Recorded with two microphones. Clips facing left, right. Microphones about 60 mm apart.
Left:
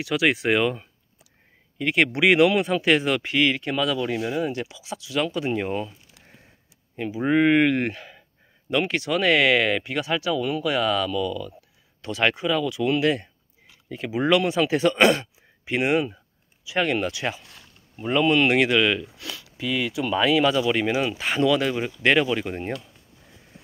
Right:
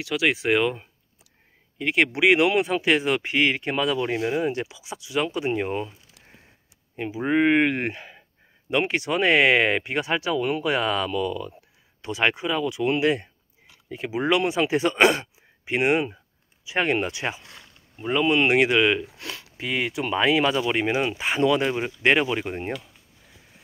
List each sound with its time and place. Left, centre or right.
0.0 s speech: centre
1.8 s speech: centre
7.2 s speech: centre; by 11.5 s right
12.0 s speech: centre
17.9 s speech: centre
18.2 s speech: centre
19.1 s speech: right; by 22.7 s centre